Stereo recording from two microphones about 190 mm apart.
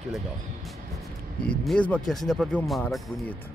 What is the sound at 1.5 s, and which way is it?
Speech, 5° left (ahead or behind).